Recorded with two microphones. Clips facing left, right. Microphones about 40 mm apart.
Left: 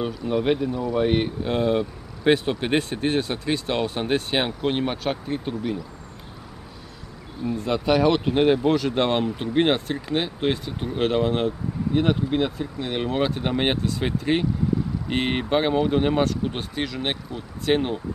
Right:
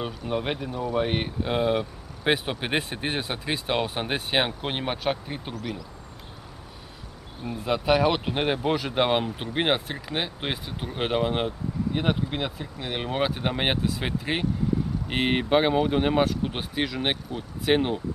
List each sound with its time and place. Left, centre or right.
0.3 s speech: centre
0.7 s speech: right
0.9 s speech: centre
7.5 s speech: centre